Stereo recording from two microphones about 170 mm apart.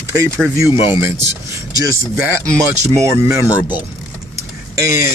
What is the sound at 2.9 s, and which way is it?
Speech, 15° right (ahead or behind).